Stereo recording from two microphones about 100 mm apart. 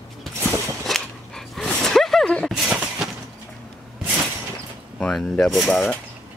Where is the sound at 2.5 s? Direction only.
5° right (ahead or behind).